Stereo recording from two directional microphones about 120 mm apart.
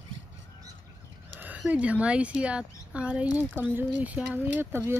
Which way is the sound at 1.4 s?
10° right (ahead or behind).